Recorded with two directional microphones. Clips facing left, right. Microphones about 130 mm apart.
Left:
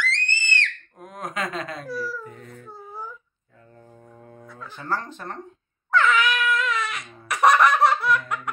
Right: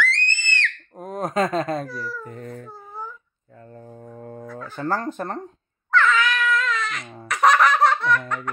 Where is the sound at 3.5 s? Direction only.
45° right (ahead or behind).